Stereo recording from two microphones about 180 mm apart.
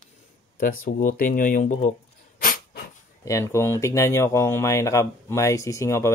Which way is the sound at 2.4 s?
55° left (ahead or behind).